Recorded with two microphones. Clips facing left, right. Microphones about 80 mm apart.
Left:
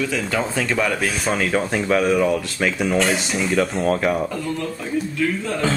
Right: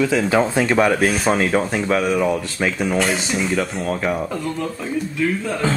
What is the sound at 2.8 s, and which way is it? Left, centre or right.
Speech, centre.